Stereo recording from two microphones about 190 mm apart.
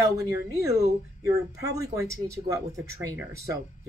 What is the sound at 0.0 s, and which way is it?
Speech, 15° right (ahead or behind).